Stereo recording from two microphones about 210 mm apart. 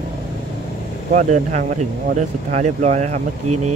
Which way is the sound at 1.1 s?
35° right (ahead or behind).